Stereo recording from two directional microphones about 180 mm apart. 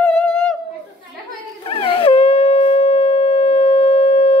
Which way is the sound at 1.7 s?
30° left (ahead or behind).